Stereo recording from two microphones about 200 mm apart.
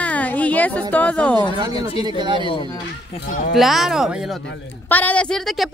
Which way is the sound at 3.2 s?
45° left (ahead or behind).